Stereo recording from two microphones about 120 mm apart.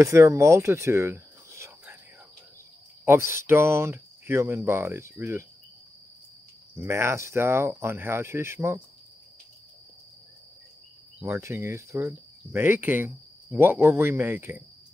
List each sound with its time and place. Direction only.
0.0 s speech: 25° right (ahead or behind)
3.1 s speech: 20° right (ahead or behind)
6.8 s speech: 20° right (ahead or behind)
11.2 s speech: 20° right (ahead or behind)